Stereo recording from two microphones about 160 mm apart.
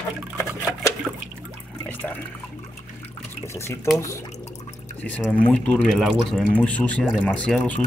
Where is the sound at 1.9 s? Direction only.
10° left (ahead or behind).